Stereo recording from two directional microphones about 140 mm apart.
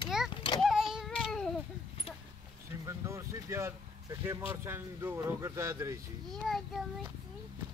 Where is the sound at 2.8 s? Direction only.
20° right (ahead or behind).